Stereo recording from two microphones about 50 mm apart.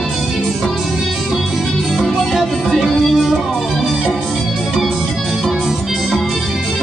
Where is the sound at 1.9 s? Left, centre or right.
Centre.